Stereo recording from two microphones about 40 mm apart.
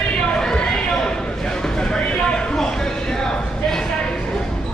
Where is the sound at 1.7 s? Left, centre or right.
Centre.